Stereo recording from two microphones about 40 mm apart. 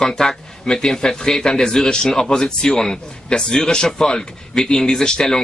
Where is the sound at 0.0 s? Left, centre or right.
Centre.